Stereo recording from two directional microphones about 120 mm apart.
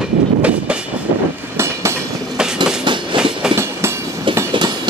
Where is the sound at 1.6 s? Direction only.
25° right (ahead or behind).